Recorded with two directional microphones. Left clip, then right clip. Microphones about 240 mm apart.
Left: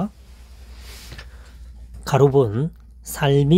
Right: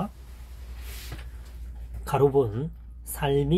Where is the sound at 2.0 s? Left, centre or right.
Left.